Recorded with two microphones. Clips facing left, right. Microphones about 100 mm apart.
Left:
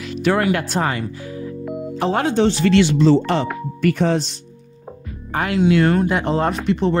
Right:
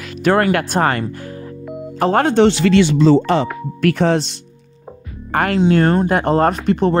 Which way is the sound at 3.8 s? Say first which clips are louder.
Right 3 dB; 75° right (ahead or behind).